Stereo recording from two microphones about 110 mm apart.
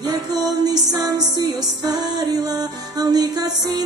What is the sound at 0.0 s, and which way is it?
Music, 35° right (ahead or behind).